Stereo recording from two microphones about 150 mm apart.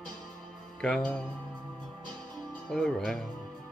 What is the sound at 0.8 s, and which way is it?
Speech, centre (ahead or behind).